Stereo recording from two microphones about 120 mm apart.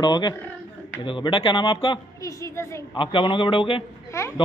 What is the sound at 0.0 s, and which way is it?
A man's voice, 35° left (ahead or behind).